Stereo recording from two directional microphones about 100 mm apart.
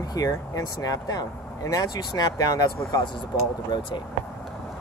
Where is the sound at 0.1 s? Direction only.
35° left (ahead or behind).